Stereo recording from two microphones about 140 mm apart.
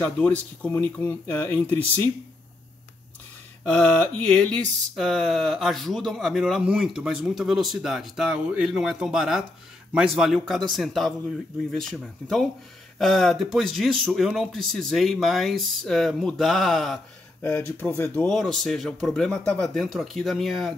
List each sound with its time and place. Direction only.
0.0 s speech: 10° left (ahead or behind)
3.7 s speech: 10° left (ahead or behind)
17.6 s speech: 15° left (ahead or behind)
18.3 s speech: 5° left (ahead or behind)